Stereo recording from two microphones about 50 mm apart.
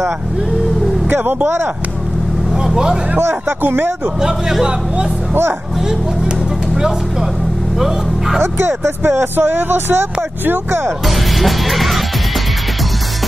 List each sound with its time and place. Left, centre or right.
1.1 s speech: right
2.5 s vehicle: centre
3.2 s speech: right
3.6 s speech: right
4.2 s speech: centre
6.7 s speech: centre
8.4 s speech: right
9.2 s speech: right
11.1 s music: centre